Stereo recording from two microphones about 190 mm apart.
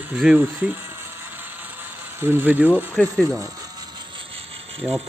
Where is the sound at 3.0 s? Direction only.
5° left (ahead or behind).